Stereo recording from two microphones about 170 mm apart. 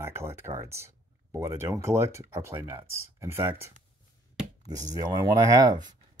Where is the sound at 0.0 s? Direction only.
15° right (ahead or behind).